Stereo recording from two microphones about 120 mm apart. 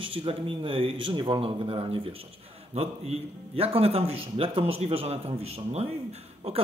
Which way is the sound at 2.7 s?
60° right (ahead or behind).